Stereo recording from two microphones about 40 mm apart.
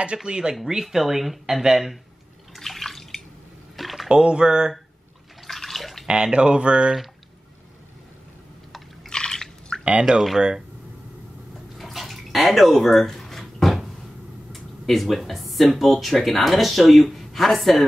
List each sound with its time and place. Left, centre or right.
0.2 s speech: centre
2.5 s bathtub: centre
3.7 s a sound: centre
4.1 s speech: right
5.5 s bathtub: centre
6.0 s speech: right
9.1 s a sound: centre
10.1 s speech: right
11.8 s bathtub: centre
14.5 s speech: centre